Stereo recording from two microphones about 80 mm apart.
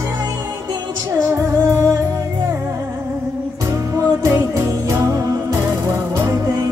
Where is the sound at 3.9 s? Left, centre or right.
Right.